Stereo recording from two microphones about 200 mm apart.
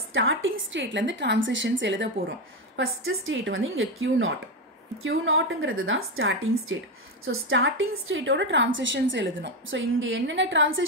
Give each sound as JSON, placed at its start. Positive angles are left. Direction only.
{"t": 0.1, "sound": "a woman's voice", "side_deg": -80}